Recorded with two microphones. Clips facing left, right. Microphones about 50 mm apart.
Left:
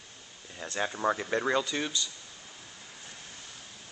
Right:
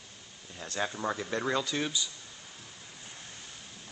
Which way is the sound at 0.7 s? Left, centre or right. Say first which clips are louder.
Left 3 dB; centre.